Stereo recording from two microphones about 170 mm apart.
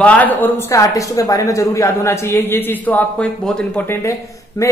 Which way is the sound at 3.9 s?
20° left (ahead or behind).